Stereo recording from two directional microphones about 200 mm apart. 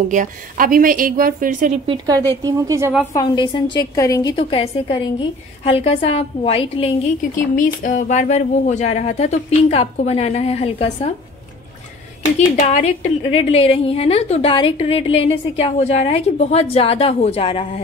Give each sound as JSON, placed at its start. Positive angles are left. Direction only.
{"t": 0.1, "sound": "a woman's voice", "side_deg": -40}
{"t": 1.9, "sound": "a woman's voice", "side_deg": -20}
{"t": 3.1, "sound": "a woman's voice", "side_deg": 20}
{"t": 4.4, "sound": "a woman's voice", "side_deg": 25}
{"t": 7.3, "sound": "a woman's voice", "side_deg": 40}
{"t": 12.4, "sound": "a woman's voice", "side_deg": 40}